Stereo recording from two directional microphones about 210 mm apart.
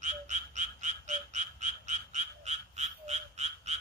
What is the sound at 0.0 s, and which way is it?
Frog, 35° right (ahead or behind).